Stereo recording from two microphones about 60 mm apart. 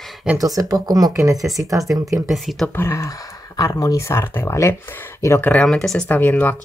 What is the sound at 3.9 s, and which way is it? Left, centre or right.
Speech, left.